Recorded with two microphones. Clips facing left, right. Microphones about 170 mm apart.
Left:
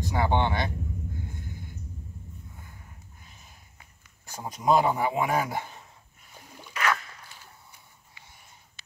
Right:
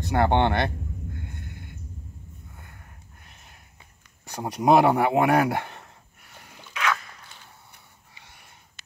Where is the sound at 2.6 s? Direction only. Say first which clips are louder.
Even; 65° right (ahead or behind).